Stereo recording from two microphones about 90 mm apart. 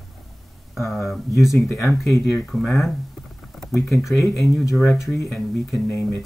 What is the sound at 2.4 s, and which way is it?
Speech, centre (ahead or behind).